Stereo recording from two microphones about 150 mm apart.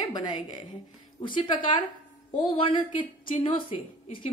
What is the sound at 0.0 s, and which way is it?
A woman's voice, 30° left (ahead or behind).